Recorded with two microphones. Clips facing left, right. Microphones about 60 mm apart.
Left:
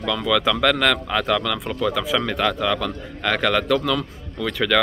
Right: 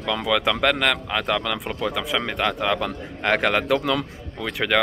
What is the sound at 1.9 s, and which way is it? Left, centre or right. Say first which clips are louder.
Speech: left 3 dB; centre.